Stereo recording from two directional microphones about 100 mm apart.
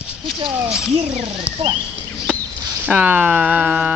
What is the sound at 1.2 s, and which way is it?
Speech, 90° right.